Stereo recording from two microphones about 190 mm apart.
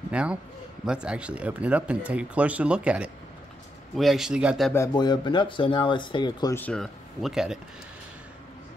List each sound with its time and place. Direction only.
0.1 s a man's voice: 5° right (ahead or behind)
4.7 s speech: 20° left (ahead or behind)
6.5 s speech: 5° left (ahead or behind)